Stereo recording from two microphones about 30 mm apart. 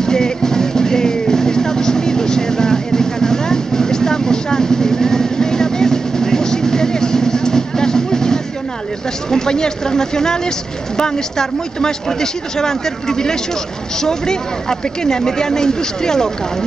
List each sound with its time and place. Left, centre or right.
0.0 s music: left
9.3 s speech: left